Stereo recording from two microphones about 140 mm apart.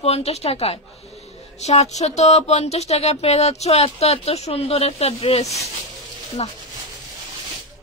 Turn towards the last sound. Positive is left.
turn(degrees=45)  # may be behind; listen again after turning